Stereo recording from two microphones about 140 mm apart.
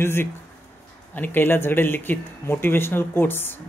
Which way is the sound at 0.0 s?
15° left (ahead or behind).